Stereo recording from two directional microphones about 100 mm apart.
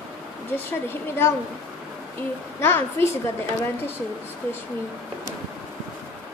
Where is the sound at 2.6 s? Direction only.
25° left (ahead or behind).